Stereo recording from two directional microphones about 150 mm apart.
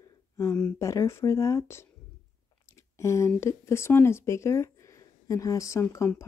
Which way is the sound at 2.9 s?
20° left (ahead or behind).